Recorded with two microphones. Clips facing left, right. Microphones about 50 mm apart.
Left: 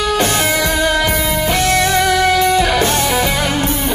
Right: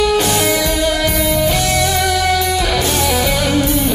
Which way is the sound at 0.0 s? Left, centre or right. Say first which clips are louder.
Right 1 dB; left.